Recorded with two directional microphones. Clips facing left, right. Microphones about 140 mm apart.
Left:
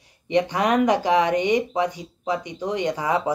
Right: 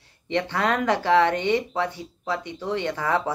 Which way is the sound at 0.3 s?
15° left (ahead or behind).